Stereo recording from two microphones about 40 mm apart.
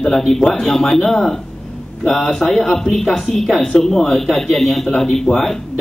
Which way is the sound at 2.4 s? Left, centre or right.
Centre.